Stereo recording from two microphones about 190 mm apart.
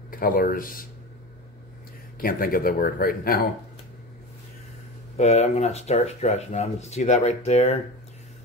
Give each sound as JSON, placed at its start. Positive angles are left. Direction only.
{"t": 0.1, "sound": "speech", "side_deg": 50}
{"t": 2.1, "sound": "speech", "side_deg": 50}
{"t": 5.1, "sound": "speech", "side_deg": 35}